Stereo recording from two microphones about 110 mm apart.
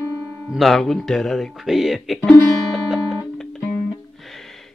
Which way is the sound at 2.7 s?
5° right (ahead or behind).